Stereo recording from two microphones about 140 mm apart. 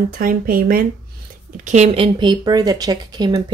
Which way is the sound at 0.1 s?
90° right.